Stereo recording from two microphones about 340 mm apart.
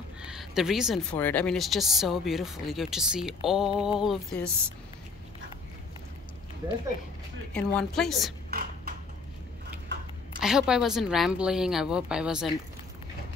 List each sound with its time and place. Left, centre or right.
0.2 s speech: centre
7.5 s speech: centre
8.5 s a sound: right
10.4 s speech: centre